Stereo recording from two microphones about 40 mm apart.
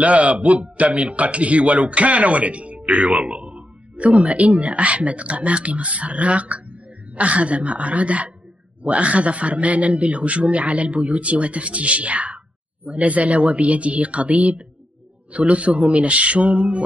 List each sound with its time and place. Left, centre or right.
0.0 s a man's voice: right